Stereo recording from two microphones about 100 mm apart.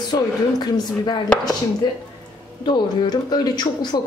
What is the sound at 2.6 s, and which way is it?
A woman's voice, 50° left (ahead or behind).